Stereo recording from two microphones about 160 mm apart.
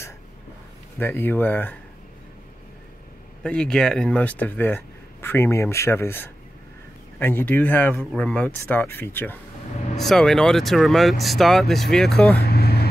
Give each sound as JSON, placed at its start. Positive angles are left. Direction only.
{"t": 0.9, "sound": "speech", "side_deg": 15}
{"t": 3.4, "sound": "speech", "side_deg": 5}
{"t": 9.9, "sound": "speech", "side_deg": 0}
{"t": 12.4, "sound": "vehicle", "side_deg": 75}